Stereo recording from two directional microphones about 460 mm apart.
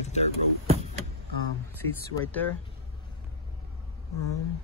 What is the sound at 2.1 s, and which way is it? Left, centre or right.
Speech, centre.